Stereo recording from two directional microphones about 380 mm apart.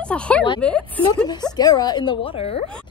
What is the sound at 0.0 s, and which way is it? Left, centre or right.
Speech, centre.